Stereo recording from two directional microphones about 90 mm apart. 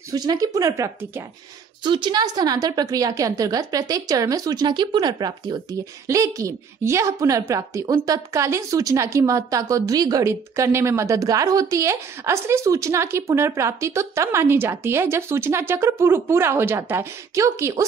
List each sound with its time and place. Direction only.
0.1 s a woman's voice: 45° right (ahead or behind)
1.8 s a woman's voice: 60° right (ahead or behind)
6.0 s a woman's voice: 40° right (ahead or behind)
10.2 s a woman's voice: 30° right (ahead or behind)